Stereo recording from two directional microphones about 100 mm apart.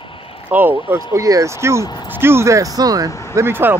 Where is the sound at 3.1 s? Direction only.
30° left (ahead or behind).